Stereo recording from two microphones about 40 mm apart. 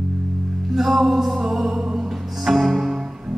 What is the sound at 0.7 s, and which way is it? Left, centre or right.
Music, centre.